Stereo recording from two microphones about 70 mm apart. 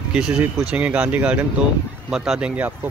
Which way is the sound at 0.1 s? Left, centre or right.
Centre.